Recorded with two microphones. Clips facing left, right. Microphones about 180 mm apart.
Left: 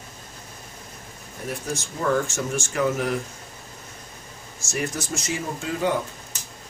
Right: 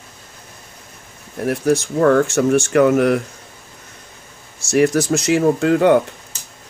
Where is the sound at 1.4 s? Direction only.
70° right (ahead or behind).